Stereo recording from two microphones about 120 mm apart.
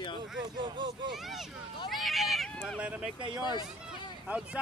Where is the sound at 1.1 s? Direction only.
Centre (ahead or behind).